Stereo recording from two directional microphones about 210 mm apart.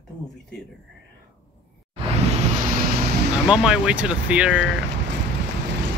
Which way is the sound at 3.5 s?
5° right (ahead or behind).